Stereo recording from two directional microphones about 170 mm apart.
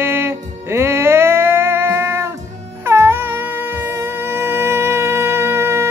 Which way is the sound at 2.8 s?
15° right (ahead or behind).